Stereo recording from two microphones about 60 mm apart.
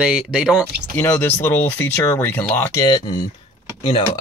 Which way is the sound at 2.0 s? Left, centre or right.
Left.